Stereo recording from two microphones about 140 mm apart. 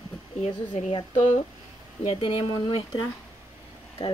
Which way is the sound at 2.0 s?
45° left (ahead or behind).